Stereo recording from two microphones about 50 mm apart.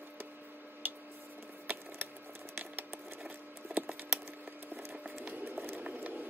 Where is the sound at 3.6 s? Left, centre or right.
Right.